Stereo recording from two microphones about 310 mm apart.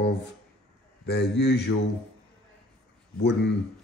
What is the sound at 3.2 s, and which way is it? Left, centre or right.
Speech, left.